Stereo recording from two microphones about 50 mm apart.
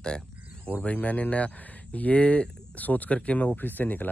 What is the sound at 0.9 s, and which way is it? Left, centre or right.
Speech, left.